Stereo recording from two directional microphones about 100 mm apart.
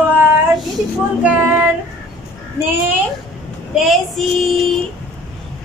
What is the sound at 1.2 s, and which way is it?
Child singing, 15° right (ahead or behind).